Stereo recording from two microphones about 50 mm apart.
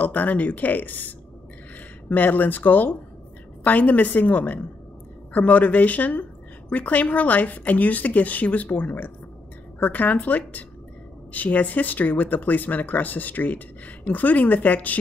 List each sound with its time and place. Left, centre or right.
0.0 s speech: left